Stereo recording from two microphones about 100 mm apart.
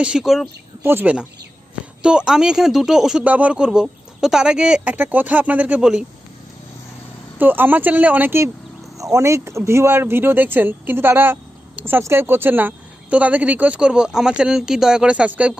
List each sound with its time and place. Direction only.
0.0 s speech: 5° right (ahead or behind)
0.8 s speech: 20° right (ahead or behind)
2.0 s speech: 10° right (ahead or behind)
4.9 s speech: 20° right (ahead or behind)
7.3 s speech: 20° right (ahead or behind)
8.9 s speech: 30° right (ahead or behind); by 15.5 s 15° right (ahead or behind)